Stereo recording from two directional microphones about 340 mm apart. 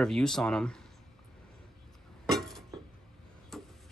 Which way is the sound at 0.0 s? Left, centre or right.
Centre.